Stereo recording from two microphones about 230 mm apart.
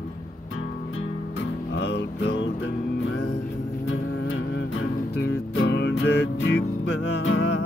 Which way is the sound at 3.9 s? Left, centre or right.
Left.